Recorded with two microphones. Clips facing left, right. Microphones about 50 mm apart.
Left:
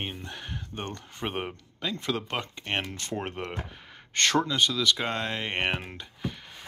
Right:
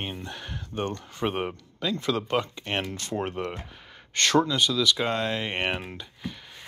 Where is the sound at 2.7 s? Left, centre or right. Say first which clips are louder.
Even; left.